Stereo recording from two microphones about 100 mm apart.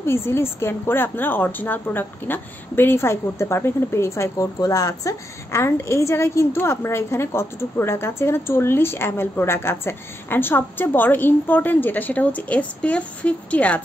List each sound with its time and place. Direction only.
0.0 s a woman's voice: 25° left (ahead or behind)